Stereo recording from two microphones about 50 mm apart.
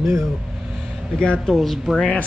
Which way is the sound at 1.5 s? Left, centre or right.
Centre.